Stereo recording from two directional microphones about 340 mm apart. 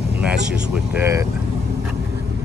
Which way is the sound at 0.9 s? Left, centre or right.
Centre.